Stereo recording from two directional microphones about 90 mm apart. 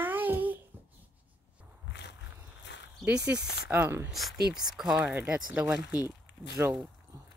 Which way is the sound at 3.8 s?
25° right (ahead or behind).